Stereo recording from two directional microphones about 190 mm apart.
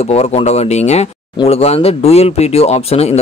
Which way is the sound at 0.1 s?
35° left (ahead or behind).